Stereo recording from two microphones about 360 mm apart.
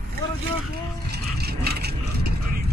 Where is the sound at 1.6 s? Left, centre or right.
Right.